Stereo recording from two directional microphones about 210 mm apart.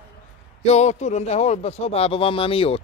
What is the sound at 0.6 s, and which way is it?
Speech, 30° left (ahead or behind).